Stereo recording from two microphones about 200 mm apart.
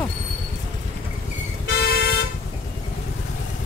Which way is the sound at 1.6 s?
55° left (ahead or behind).